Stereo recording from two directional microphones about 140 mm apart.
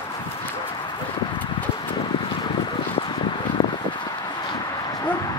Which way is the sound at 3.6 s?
40° left (ahead or behind).